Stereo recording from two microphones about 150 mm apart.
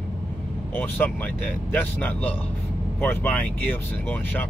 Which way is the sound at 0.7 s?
10° left (ahead or behind).